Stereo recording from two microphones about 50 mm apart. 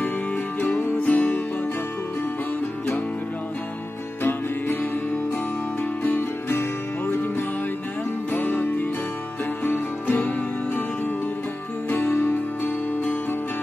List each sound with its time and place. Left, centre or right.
0.6 s music: left
4.2 s music: left
6.0 s music: left
11.9 s music: left